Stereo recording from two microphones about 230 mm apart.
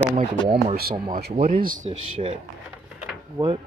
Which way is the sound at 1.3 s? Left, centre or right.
Right.